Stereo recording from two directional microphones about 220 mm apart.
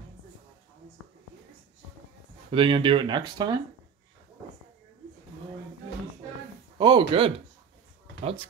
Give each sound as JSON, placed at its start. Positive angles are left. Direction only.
{"t": 2.5, "sound": "speech", "side_deg": -20}
{"t": 6.8, "sound": "speech", "side_deg": -20}